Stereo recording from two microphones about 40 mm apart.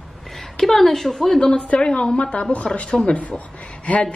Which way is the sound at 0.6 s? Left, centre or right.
Centre.